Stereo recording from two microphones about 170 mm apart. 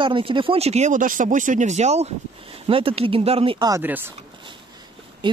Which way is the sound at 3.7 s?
10° right (ahead or behind).